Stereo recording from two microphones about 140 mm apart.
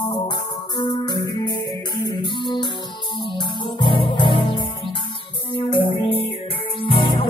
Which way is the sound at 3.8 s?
35° left (ahead or behind).